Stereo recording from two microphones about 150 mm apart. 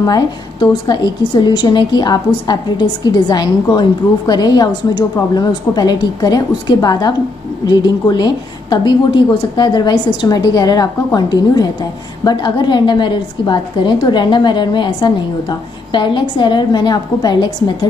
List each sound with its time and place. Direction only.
0.0 s a woman's voice: 25° left (ahead or behind)